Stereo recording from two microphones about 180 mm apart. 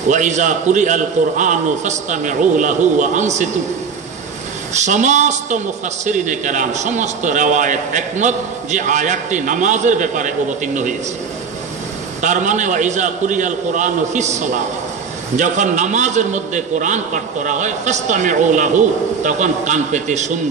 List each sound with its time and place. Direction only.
0.1 s a man's voice: 45° right (ahead or behind)
4.7 s a man's voice: 40° right (ahead or behind)
12.2 s a man's voice: 45° right (ahead or behind)